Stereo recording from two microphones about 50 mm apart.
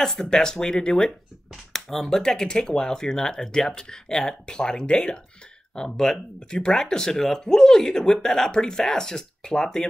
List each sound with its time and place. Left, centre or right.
0.0 s speech: centre